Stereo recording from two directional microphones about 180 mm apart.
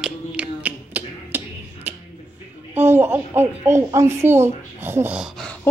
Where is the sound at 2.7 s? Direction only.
15° right (ahead or behind).